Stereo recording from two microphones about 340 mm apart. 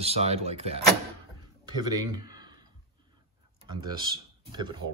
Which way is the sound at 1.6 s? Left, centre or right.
Centre.